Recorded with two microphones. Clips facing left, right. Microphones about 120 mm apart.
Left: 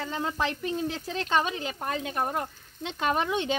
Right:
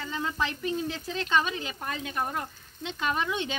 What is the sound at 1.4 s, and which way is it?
Speech, 30° left (ahead or behind).